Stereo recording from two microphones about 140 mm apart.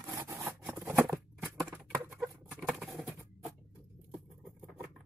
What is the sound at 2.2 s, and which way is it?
Patter, centre (ahead or behind).